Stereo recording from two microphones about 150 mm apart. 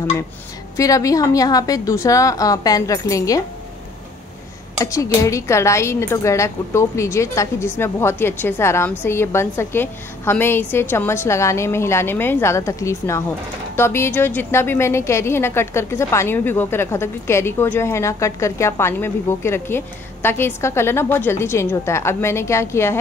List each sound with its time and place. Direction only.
0.7 s a woman's voice: 20° left (ahead or behind)
4.7 s a woman's voice: 20° left (ahead or behind)